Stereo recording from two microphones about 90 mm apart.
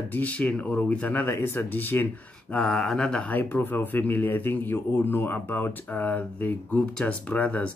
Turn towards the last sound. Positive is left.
turn(degrees=15)  # may be behind; listen again after turning